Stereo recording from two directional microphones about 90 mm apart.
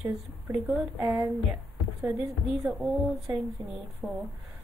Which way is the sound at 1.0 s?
40° right (ahead or behind).